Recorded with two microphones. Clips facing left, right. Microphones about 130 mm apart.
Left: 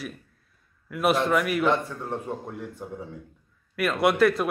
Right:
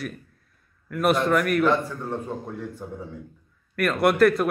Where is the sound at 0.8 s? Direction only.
5° left (ahead or behind).